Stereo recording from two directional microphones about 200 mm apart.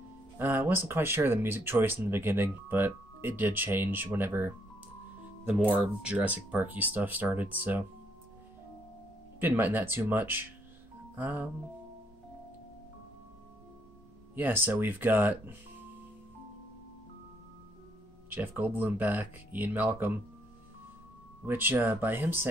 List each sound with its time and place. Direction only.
0.4 s speech: 10° right (ahead or behind)
5.5 s speech: 5° right (ahead or behind)
9.4 s speech: 10° right (ahead or behind)
14.3 s speech: 10° right (ahead or behind)
18.3 s speech: 10° right (ahead or behind)
21.5 s speech: 10° right (ahead or behind)